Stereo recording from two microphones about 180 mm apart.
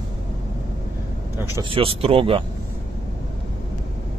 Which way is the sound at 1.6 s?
30° right (ahead or behind).